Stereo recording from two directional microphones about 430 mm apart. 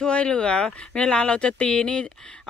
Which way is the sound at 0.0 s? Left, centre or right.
Centre.